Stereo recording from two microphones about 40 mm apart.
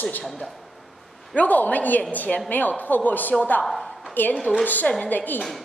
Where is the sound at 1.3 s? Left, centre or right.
Left.